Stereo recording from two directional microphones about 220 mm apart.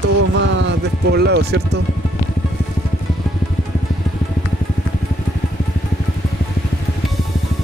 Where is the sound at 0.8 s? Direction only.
50° right (ahead or behind).